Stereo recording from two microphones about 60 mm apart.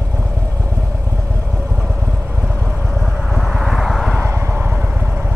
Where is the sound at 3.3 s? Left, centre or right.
Left.